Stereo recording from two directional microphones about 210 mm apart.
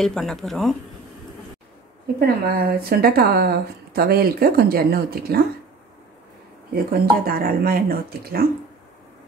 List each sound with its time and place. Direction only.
0.0 s speech: centre (ahead or behind)
2.1 s speech: 50° right (ahead or behind)
6.7 s speech: 45° right (ahead or behind)